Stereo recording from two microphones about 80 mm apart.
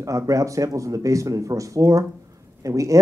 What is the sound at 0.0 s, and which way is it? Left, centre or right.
Speech, right.